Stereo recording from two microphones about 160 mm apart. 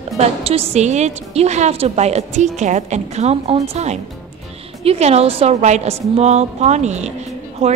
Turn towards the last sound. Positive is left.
turn(degrees=-40)  # may be behind; listen again after turning